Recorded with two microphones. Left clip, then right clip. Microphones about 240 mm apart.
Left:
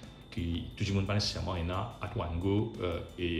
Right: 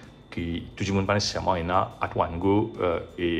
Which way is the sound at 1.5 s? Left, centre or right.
Right.